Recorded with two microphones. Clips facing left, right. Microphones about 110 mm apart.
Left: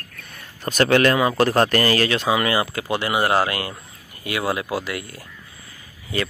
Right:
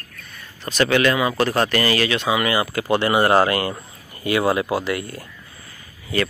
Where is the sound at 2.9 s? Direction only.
10° left (ahead or behind).